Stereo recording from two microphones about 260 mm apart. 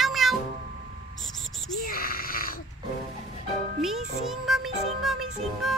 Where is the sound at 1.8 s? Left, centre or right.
Left.